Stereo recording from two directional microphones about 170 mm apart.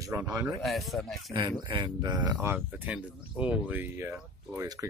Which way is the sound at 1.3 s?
25° right (ahead or behind).